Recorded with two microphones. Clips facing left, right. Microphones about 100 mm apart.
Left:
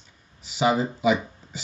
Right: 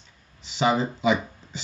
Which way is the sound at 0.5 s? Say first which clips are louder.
Even; 10° left (ahead or behind).